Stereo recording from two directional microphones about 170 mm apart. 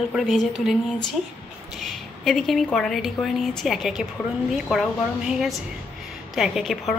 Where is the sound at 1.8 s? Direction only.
Centre (ahead or behind).